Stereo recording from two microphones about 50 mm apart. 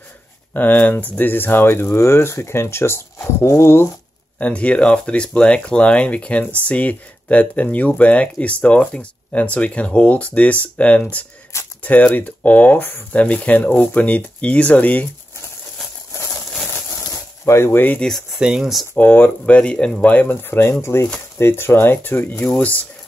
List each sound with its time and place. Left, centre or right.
0.5 s speech: left
2.0 s speech: left
4.4 s speech: left
17.5 s speech: left
18.0 s speech: centre
18.4 s speech: centre
18.9 s speech: left
20.4 s speech: left
20.8 s speech: left
22.6 s speech: left